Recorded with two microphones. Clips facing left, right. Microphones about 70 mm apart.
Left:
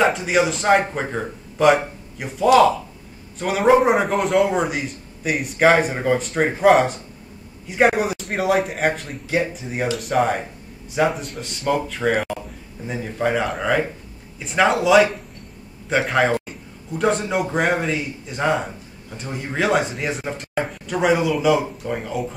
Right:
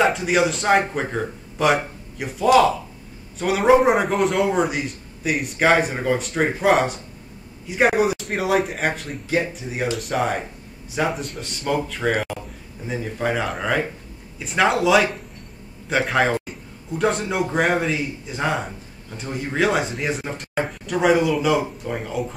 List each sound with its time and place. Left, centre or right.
0.0 s speech: centre